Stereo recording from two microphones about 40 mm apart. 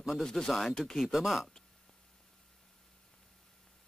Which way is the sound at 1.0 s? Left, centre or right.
Centre.